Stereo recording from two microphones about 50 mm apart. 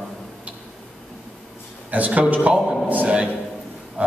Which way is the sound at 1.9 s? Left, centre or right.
Right.